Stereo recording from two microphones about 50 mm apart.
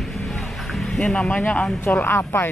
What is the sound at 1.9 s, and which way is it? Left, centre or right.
Speech, left.